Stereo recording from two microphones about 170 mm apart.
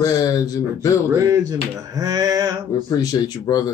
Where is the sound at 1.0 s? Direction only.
20° right (ahead or behind).